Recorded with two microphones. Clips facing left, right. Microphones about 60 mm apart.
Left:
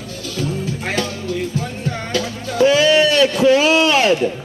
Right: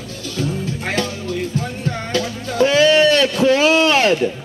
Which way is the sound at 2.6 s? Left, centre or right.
Right.